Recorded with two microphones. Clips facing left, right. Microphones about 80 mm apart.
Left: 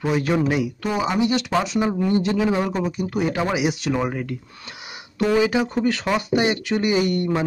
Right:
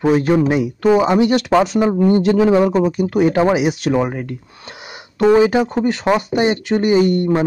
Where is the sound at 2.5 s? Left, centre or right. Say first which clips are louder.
Right 9 dB; right.